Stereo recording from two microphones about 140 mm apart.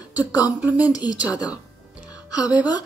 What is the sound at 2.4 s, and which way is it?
Speech, 10° right (ahead or behind).